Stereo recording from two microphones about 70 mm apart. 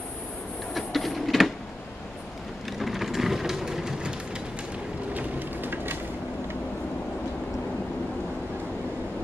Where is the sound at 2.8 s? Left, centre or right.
Centre.